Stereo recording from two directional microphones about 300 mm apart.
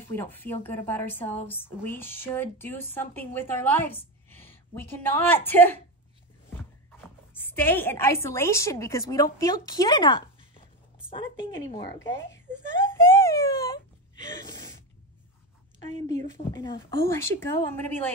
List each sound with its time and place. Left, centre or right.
0.0 s speech: centre
7.0 s speech: centre
12.3 s a sound: centre
14.3 s sneeze: centre
16.5 s speech: centre